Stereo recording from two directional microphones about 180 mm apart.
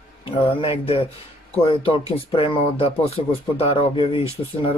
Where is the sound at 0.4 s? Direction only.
30° left (ahead or behind).